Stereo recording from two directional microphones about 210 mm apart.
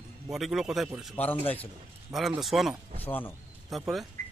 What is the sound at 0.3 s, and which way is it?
Speech, centre (ahead or behind).